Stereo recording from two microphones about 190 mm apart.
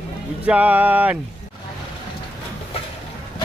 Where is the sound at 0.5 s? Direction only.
10° right (ahead or behind).